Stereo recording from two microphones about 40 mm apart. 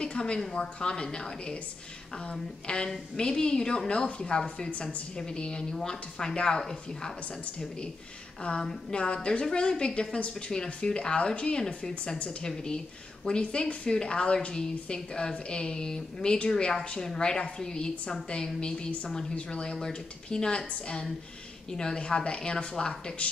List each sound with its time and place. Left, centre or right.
0.0 s a sound: left
0.6 s a woman's voice: left
2.6 s a woman's voice: left
8.4 s a woman's voice: left